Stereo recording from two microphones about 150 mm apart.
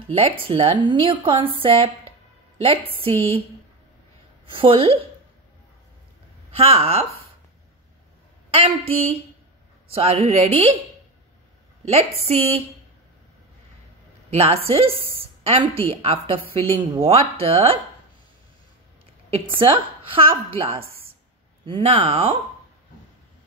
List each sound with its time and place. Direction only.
0.1 s a woman's voice: 35° right (ahead or behind)
3.0 s a woman's voice: 40° right (ahead or behind)
4.5 s a woman's voice: 35° right (ahead or behind)
6.5 s a woman's voice: 40° right (ahead or behind)
8.5 s a woman's voice: 40° right (ahead or behind)
11.8 s a woman's voice: 45° right (ahead or behind)
14.3 s a woman's voice: 40° right (ahead or behind)
19.3 s a woman's voice: 35° right (ahead or behind)